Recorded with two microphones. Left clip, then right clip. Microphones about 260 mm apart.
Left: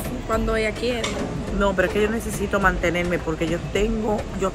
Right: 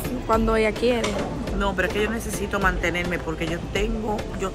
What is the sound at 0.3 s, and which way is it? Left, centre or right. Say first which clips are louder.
Speech: right 2 dB; centre.